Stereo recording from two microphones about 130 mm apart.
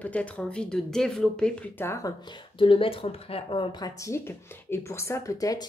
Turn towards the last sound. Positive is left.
turn(degrees=25)  # may be behind; listen again after turning